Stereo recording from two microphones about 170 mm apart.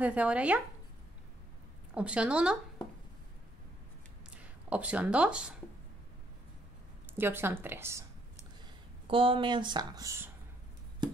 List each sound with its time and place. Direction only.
0.0 s speech: 5° right (ahead or behind)
2.0 s speech: 5° right (ahead or behind)
4.3 s speech: 5° right (ahead or behind)
7.2 s speech: 10° right (ahead or behind)
9.0 s speech: 30° right (ahead or behind)